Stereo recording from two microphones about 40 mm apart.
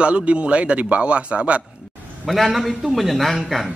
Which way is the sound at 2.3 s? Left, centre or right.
Centre.